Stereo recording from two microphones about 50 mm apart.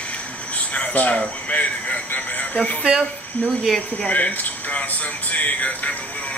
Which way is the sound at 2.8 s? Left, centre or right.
Centre.